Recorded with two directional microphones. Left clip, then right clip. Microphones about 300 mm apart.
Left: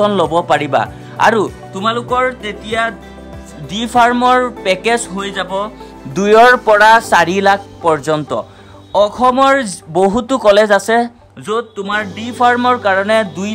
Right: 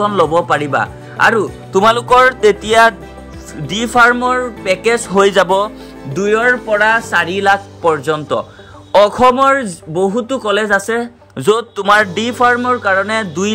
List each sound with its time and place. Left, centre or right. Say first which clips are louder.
0.0 s speech: even; centre
1.9 s music: right 5 dB; centre
3.6 s speech: right 2 dB; centre
5.1 s music: right 9 dB; centre
6.1 s speech: left 5 dB; centre
11.3 s speech: right 5 dB; centre
11.8 s music: right 8 dB; centre
12.5 s speech: left 1 dB; centre